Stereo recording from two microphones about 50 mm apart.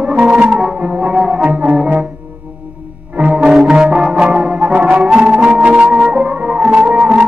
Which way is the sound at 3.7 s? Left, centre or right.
Centre.